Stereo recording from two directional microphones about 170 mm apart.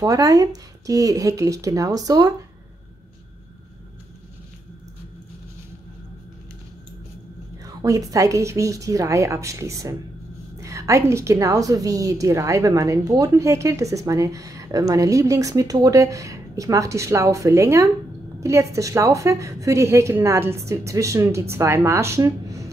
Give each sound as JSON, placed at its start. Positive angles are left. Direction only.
{"t": 0.0, "sound": "a woman's voice", "side_deg": -20}
{"t": 7.5, "sound": "a woman's voice", "side_deg": -20}